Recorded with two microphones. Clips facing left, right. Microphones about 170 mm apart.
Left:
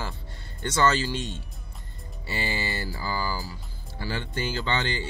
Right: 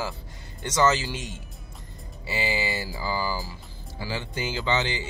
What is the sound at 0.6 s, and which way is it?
Speech, 20° right (ahead or behind).